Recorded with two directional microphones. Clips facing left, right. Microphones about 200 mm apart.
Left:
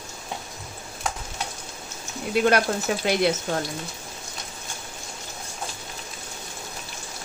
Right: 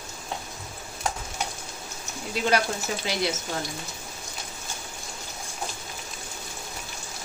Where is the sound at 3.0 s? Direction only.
55° left (ahead or behind).